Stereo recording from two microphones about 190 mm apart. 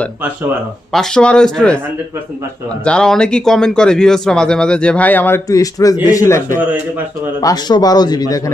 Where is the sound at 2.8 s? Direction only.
5° left (ahead or behind).